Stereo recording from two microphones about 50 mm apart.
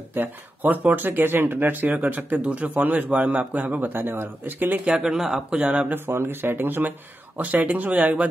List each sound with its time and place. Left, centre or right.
0.1 s speech: right
3.1 s speech: right
4.8 s speech: centre
5.6 s speech: right
6.0 s speech: right